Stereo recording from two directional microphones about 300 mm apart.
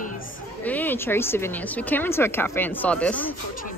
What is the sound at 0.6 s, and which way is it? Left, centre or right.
A woman's voice, centre.